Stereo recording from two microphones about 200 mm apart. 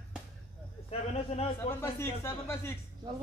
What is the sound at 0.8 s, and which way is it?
Speech, 30° left (ahead or behind).